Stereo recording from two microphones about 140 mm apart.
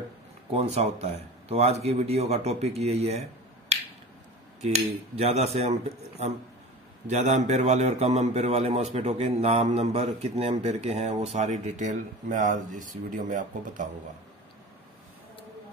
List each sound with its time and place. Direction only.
0.5 s a man's voice: 45° right (ahead or behind); by 13.8 s 65° right (ahead or behind)